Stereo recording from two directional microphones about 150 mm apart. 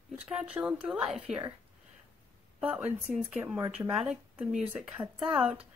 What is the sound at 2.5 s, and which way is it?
A woman's voice, 10° right (ahead or behind).